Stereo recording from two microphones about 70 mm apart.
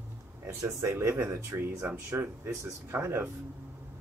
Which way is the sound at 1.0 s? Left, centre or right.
Right.